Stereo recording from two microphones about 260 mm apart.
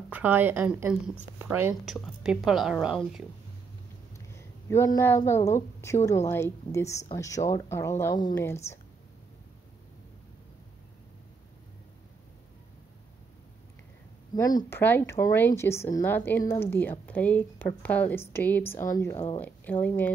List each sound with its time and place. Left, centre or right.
0.1 s a woman's voice: centre
4.3 s speech: centre
14.3 s speech: centre
19.1 s speech: left
19.4 s speech: centre